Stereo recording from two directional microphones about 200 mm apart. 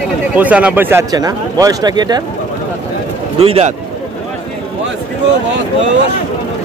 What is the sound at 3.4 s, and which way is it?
Speech, 30° right (ahead or behind).